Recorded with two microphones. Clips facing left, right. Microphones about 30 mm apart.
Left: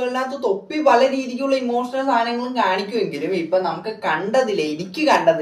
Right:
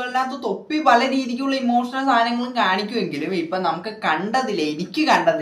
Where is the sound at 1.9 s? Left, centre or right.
Right.